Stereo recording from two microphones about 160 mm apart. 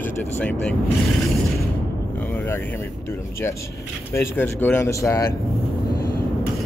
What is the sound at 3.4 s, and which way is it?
Speech, 15° left (ahead or behind).